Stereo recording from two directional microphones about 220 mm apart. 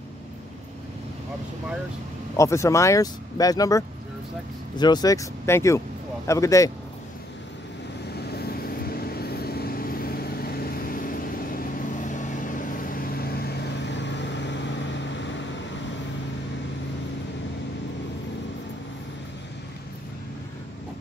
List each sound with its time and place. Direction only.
2.3 s speech: 15° left (ahead or behind)
8.3 s vehicle: 45° left (ahead or behind)